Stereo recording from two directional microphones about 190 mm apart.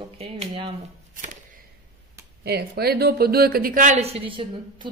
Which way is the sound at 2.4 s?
55° right (ahead or behind).